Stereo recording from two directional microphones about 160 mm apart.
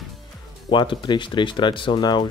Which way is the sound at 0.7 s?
30° left (ahead or behind).